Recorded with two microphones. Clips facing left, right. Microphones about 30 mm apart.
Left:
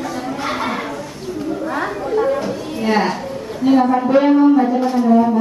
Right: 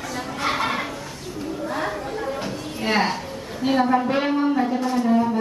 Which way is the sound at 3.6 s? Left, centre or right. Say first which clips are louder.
Left 8 dB; right.